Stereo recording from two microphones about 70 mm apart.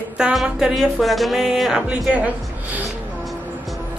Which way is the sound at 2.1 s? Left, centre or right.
Right.